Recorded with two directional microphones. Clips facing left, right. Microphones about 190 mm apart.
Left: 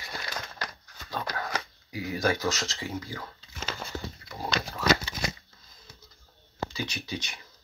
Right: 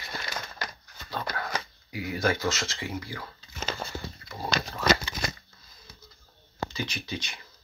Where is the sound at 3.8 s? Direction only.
35° right (ahead or behind).